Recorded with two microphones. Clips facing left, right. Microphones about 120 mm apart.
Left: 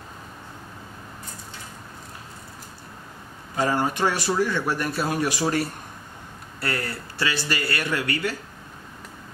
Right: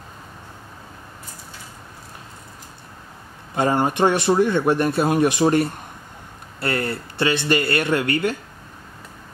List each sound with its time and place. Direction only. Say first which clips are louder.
3.5 s a man's voice: right 4 dB; 25° right (ahead or behind)